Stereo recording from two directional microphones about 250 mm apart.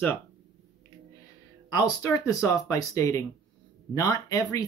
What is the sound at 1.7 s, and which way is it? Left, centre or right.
Speech, centre.